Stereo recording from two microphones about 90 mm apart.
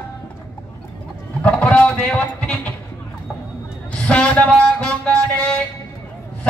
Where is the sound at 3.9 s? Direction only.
15° left (ahead or behind).